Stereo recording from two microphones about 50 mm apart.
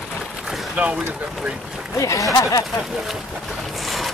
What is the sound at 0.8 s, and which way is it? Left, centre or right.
Speech, right.